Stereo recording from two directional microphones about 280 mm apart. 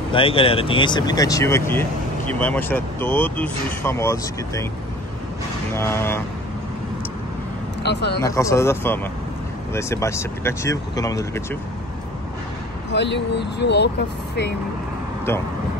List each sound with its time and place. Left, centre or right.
0.1 s speech: centre
5.8 s speech: centre
7.8 s speech: left
8.2 s speech: centre
12.9 s speech: left